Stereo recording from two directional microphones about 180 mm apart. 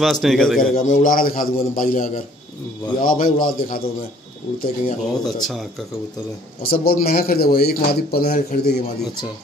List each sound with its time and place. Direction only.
0.0 s a man's voice: centre (ahead or behind)
0.7 s a man's voice: 45° left (ahead or behind)
5.2 s a man's voice: centre (ahead or behind)
6.6 s a man's voice: 55° left (ahead or behind)